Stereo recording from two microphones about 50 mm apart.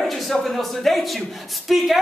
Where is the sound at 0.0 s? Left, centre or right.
Centre.